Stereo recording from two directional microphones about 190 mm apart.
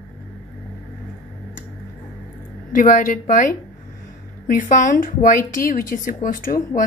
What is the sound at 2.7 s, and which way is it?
A woman's voice, 45° left (ahead or behind).